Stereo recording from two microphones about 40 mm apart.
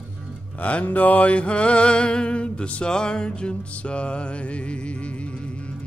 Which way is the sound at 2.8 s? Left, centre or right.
Left.